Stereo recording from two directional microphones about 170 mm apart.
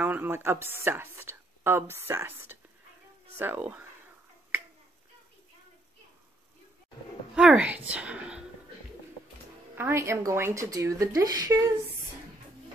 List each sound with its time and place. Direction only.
0.0 s a woman's voice: 10° right (ahead or behind)
7.3 s a woman's voice: 5° right (ahead or behind)
9.8 s a woman's voice: 15° right (ahead or behind)